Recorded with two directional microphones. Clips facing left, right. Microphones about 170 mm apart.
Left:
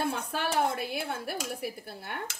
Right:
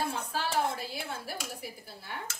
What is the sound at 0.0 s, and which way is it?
A woman's voice, 60° left (ahead or behind).